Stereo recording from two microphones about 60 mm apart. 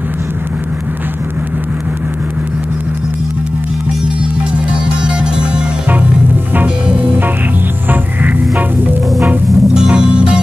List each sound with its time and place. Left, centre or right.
5.0 s music: centre
7.9 s music: right
9.5 s music: centre